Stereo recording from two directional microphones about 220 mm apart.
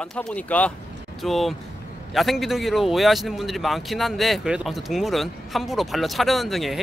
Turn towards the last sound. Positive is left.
turn(degrees=0)  # may be behind; listen again after turning